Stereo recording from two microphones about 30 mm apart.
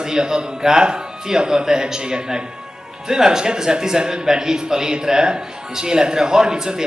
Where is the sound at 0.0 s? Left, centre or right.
Right.